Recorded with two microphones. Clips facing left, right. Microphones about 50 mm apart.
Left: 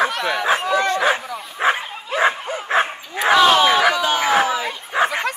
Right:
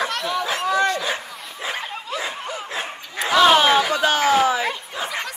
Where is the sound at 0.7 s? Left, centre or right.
Left.